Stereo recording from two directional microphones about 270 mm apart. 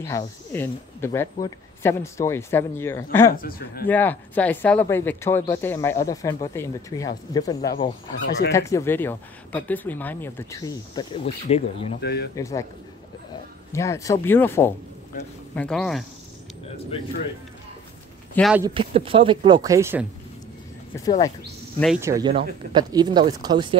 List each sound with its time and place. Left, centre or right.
0.0 s speech: centre
3.3 s speech: left
3.8 s speech: centre; by 11.9 s left
12.0 s speech: left
12.4 s speech: centre
13.7 s speech: centre
18.3 s a man's voice: centre
18.6 s speech: centre
20.9 s speech: centre
21.7 s speech: centre
22.0 s speech: centre